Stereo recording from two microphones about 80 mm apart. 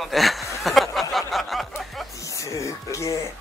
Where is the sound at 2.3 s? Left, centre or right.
Left.